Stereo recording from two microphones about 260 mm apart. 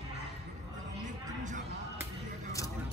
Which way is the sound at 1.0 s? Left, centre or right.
Right.